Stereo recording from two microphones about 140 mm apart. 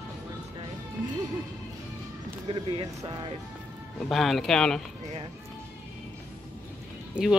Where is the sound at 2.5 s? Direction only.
30° right (ahead or behind).